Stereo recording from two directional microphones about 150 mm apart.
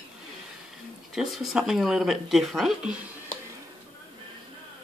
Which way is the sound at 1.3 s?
Centre (ahead or behind).